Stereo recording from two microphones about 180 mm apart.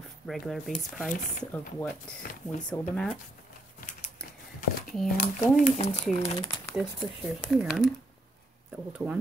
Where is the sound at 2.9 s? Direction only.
Centre (ahead or behind).